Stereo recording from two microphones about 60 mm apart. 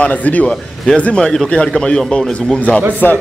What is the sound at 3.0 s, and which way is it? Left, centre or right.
Speech, left.